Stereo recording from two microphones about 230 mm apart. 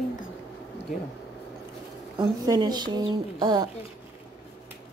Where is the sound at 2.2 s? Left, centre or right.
Centre.